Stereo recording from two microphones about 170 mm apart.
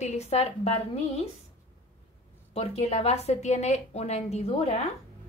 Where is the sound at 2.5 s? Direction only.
35° left (ahead or behind).